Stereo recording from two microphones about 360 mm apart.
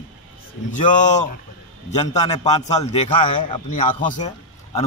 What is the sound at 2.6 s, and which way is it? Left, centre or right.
A man's voice, centre.